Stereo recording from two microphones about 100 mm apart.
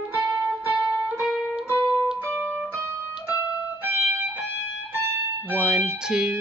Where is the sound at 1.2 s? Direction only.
5° right (ahead or behind).